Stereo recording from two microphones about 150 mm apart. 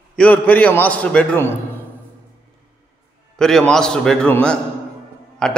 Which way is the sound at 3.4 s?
5° left (ahead or behind).